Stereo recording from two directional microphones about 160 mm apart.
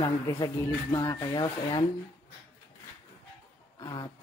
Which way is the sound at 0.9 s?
25° left (ahead or behind).